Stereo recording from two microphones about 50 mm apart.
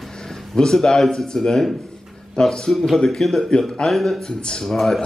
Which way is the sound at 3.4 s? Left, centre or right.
Centre.